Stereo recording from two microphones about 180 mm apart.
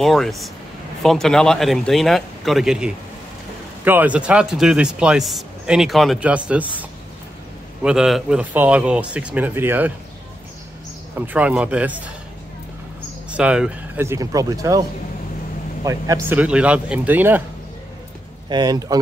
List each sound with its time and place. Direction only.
0.0 s a man's voice: centre (ahead or behind)
11.1 s a man's voice: 10° right (ahead or behind)
13.3 s a man's voice: 5° right (ahead or behind)
16.3 s a man's voice: 5° right (ahead or behind)
18.5 s speech: 20° right (ahead or behind)